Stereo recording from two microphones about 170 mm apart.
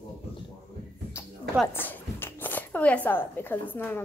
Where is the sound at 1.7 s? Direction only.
10° left (ahead or behind).